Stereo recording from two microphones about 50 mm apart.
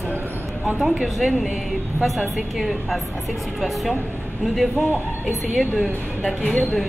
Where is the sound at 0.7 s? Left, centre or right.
Centre.